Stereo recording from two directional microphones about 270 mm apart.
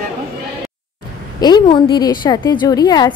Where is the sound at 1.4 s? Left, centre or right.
Centre.